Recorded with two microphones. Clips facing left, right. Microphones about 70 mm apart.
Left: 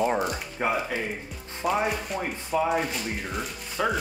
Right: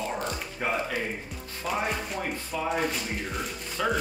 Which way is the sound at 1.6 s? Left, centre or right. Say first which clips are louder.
Left 4 dB; centre.